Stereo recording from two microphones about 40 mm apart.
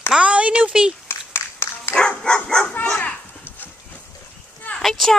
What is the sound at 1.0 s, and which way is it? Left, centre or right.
Dog, left.